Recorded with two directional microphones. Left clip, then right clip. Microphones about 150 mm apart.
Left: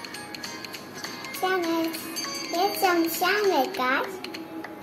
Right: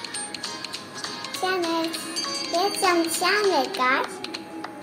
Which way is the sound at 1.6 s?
30° right (ahead or behind).